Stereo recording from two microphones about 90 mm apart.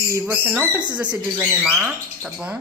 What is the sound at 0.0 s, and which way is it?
Speech, 35° right (ahead or behind).